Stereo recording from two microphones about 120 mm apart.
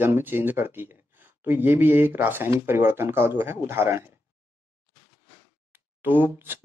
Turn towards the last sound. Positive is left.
turn(degrees=-15)  # may be behind; listen again after turning